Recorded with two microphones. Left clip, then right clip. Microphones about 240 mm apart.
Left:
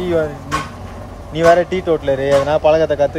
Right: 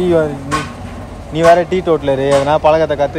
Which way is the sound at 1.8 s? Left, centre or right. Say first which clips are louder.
Right 3 dB; centre.